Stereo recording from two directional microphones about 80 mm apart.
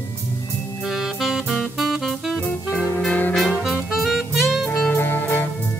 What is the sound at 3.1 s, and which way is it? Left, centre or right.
Brass instrument, centre.